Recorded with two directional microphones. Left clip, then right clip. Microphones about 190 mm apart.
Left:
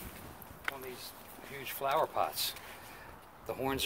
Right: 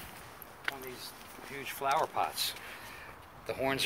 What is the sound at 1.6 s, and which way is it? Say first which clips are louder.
Speech: right 1 dB; 50° left (ahead or behind).